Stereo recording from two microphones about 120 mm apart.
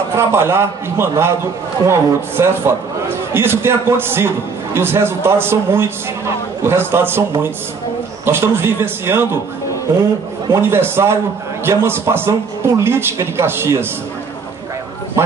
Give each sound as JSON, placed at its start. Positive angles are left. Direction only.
{"t": 0.1, "sound": "a man's voice", "side_deg": -20}
{"t": 10.5, "sound": "a man's voice", "side_deg": -20}